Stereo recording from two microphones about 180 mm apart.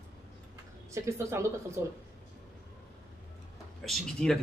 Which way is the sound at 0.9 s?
15° right (ahead or behind).